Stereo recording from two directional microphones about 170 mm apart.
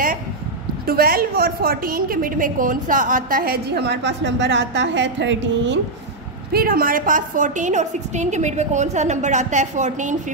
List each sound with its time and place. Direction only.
0.8 s a woman's voice: 60° right (ahead or behind); by 5.8 s 90° right
6.5 s a woman's voice: 60° right (ahead or behind)